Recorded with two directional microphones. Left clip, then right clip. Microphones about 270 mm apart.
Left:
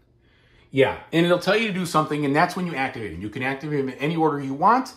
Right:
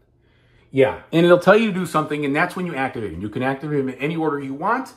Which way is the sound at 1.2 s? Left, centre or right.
Right.